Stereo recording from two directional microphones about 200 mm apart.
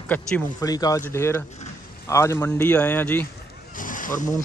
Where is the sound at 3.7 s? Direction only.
40° left (ahead or behind).